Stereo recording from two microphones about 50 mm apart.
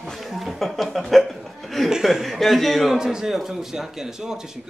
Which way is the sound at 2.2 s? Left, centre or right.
Centre.